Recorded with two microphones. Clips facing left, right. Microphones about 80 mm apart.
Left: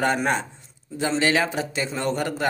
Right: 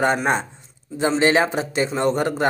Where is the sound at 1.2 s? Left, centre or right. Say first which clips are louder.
Right 4 dB; right.